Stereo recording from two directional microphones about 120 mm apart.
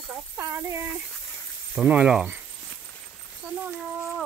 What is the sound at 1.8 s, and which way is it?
Speech, 10° right (ahead or behind).